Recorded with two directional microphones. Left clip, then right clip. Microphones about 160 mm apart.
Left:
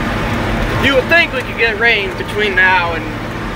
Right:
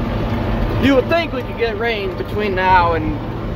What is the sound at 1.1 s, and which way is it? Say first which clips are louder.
Speech: left 6 dB; 15° right (ahead or behind).